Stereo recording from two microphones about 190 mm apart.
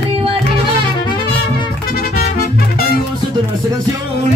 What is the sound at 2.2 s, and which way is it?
Music, 55° left (ahead or behind).